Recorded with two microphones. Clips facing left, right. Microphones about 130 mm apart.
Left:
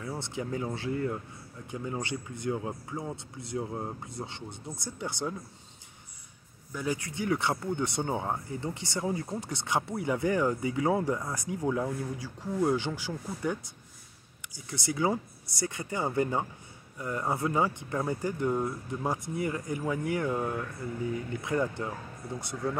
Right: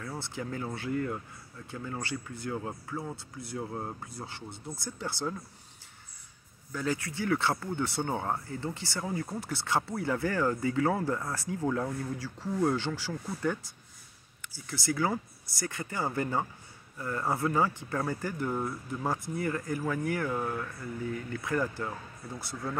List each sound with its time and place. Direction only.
0.0 s speech: 20° left (ahead or behind)
6.7 s speech: 15° left (ahead or behind)